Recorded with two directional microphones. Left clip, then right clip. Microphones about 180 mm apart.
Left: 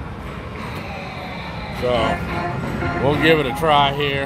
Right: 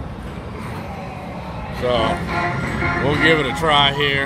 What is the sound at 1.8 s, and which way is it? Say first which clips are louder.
Speech: right 1 dB; 5° left (ahead or behind).